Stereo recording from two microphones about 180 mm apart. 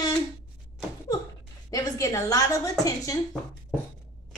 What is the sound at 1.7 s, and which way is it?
A woman's voice, 20° left (ahead or behind).